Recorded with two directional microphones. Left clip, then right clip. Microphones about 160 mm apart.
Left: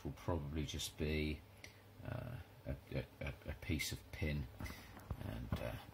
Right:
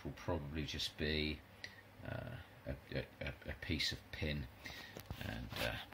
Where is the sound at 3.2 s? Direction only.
5° right (ahead or behind).